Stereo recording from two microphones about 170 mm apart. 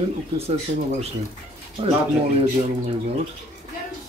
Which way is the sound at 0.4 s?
35° right (ahead or behind).